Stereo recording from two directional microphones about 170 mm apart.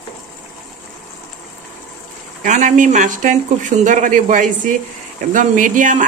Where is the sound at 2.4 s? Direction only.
50° right (ahead or behind).